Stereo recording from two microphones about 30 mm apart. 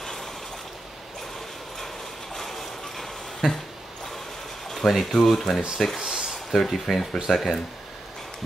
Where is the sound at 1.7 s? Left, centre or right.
Centre.